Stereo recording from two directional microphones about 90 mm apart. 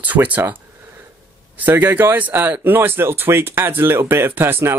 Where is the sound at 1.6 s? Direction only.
20° right (ahead or behind).